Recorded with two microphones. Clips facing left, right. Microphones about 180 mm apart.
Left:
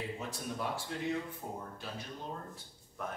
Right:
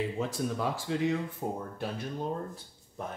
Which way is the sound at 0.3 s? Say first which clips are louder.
Right 6 dB; 90° right.